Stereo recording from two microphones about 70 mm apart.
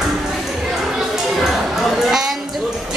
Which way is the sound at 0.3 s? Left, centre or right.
Centre.